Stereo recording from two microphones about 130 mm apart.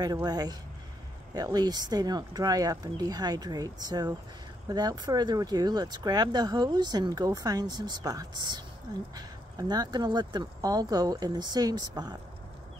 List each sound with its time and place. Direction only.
0.0 s speech: 30° right (ahead or behind)